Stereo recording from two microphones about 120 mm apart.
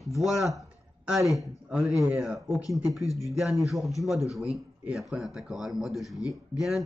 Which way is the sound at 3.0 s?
25° left (ahead or behind).